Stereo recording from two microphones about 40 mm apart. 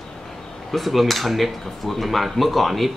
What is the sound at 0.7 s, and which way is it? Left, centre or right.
Speech, centre.